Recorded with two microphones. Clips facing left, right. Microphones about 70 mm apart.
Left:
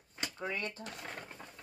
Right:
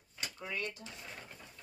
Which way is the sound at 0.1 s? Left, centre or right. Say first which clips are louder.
Left 3 dB; left.